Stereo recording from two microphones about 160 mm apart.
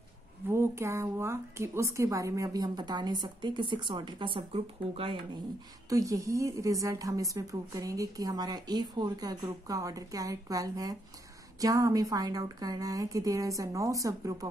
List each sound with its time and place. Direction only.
0.5 s a woman's voice: 15° right (ahead or behind); by 5.4 s 35° right (ahead or behind)
5.9 s a woman's voice: 20° right (ahead or behind)